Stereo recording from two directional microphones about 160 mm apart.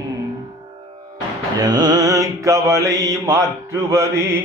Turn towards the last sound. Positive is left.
turn(degrees=-15)  # may be behind; listen again after turning